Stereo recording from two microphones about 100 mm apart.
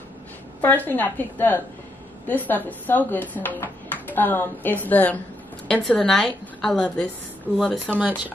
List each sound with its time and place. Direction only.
0.6 s a woman's voice: 20° left (ahead or behind)
5.7 s a woman's voice: 5° left (ahead or behind)
7.8 s speech: 15° right (ahead or behind)